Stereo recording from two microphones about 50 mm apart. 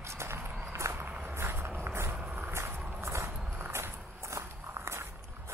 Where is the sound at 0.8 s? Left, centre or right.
Right.